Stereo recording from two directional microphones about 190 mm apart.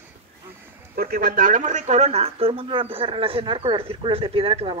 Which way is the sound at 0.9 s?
50° right (ahead or behind).